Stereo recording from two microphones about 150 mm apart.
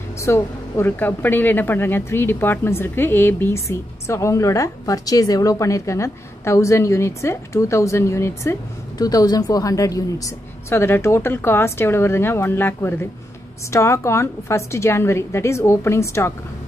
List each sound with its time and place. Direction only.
0.2 s a woman's voice: 20° left (ahead or behind)